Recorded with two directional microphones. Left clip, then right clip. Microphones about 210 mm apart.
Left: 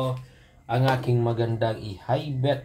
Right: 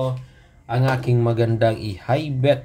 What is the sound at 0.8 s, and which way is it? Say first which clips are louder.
Speech: right 3 dB; 10° right (ahead or behind).